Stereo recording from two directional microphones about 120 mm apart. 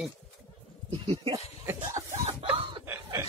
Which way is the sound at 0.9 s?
45° right (ahead or behind).